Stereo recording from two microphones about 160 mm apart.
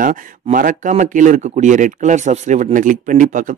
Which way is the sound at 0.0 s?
55° right (ahead or behind).